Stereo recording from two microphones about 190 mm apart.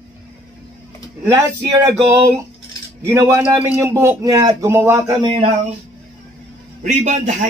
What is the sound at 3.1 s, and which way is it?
A man's voice, 15° right (ahead or behind).